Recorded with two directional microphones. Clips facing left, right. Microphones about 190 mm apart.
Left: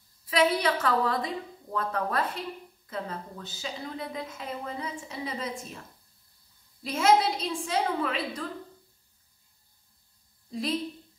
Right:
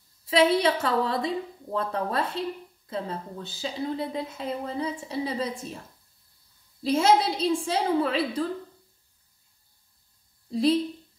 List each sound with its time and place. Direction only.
0.3 s a woman's voice: 25° right (ahead or behind)
6.8 s a woman's voice: 30° right (ahead or behind)